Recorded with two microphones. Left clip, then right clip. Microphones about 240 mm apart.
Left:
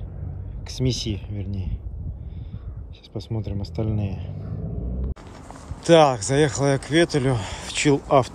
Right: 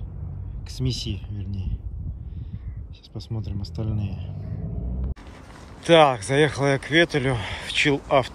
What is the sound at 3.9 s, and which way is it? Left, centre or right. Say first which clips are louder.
Speech: left 4 dB; centre.